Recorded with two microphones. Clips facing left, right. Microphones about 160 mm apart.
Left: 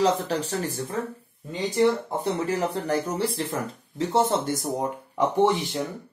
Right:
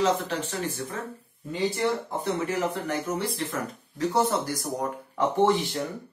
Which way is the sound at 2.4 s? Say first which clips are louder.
Left 2 dB; 35° left (ahead or behind).